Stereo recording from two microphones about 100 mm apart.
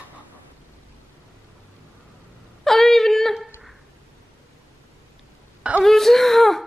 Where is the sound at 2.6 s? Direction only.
5° left (ahead or behind).